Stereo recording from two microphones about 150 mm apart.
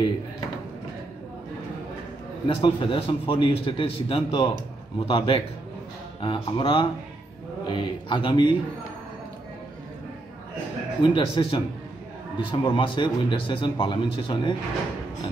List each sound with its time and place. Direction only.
2.4 s a man's voice: 35° left (ahead or behind)
11.0 s a man's voice: 35° left (ahead or behind)